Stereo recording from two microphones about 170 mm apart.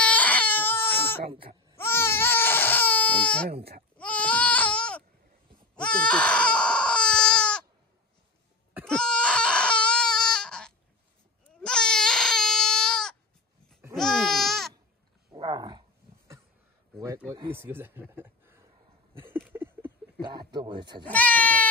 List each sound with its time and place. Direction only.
0.0 s baby cry: 10° left (ahead or behind)
3.4 s speech: 65° right (ahead or behind)
3.9 s goat: 5° left (ahead or behind)
5.8 s a sound: 5° left (ahead or behind)
8.8 s a sound: 5° left (ahead or behind)
11.6 s baby cry: 5° left (ahead or behind)
13.9 s a sound: 5° left (ahead or behind)
15.3 s dog: 25° right (ahead or behind)
17.3 s speech: 15° right (ahead or behind)
18.1 s a sound: 10° right (ahead or behind)
20.2 s speech: 25° right (ahead or behind)
21.1 s speech: 10° left (ahead or behind)